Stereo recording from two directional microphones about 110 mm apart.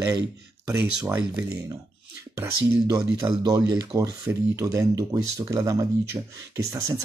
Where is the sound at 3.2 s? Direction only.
35° right (ahead or behind).